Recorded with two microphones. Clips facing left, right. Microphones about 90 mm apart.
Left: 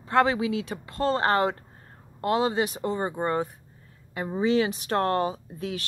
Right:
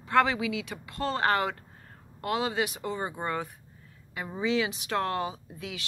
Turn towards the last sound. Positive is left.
turn(degrees=40)  # may be behind; listen again after turning